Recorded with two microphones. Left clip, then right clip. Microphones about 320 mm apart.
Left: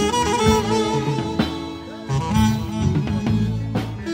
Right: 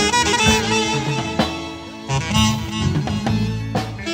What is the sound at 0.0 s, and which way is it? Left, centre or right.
Music, right.